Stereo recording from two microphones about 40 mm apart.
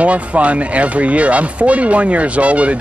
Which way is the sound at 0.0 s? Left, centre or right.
Right.